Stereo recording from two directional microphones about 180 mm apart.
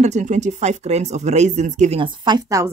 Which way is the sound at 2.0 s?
25° right (ahead or behind).